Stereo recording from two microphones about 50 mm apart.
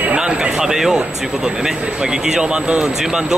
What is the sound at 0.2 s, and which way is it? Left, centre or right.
Speech, centre.